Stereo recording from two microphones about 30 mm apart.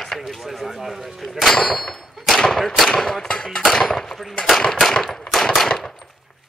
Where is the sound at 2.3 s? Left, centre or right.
Centre.